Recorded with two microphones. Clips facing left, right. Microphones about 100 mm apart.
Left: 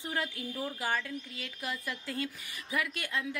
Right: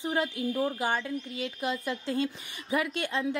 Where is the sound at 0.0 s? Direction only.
20° right (ahead or behind).